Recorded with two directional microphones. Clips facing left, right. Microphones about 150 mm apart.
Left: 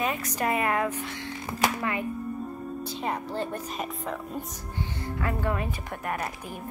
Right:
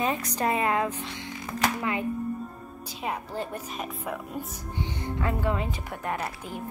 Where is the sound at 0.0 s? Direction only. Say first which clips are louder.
Right 1 dB; 25° right (ahead or behind).